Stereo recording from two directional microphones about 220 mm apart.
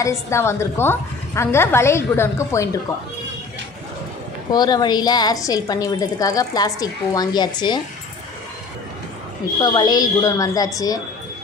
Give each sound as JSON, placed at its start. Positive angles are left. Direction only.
{"t": 0.0, "sound": "a woman's voice", "side_deg": 15}
{"t": 4.5, "sound": "a woman's voice", "side_deg": 20}
{"t": 9.6, "sound": "a woman's voice", "side_deg": 20}